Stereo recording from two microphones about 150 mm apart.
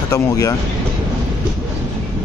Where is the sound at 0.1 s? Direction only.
20° left (ahead or behind).